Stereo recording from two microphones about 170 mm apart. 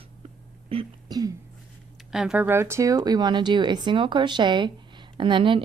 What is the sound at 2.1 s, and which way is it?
A woman's voice, 5° right (ahead or behind).